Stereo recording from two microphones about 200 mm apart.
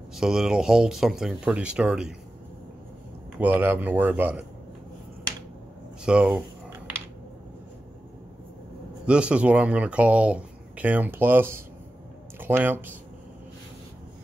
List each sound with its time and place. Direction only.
0.1 s speech: centre (ahead or behind)
3.3 s speech: 10° right (ahead or behind)
6.0 s speech: 5° right (ahead or behind)
9.0 s speech: 5° right (ahead or behind)